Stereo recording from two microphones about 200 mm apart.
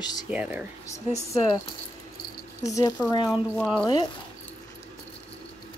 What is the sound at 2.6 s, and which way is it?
Speech, 15° left (ahead or behind).